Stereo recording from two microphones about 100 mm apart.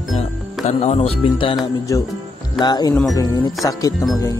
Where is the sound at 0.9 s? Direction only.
90° left.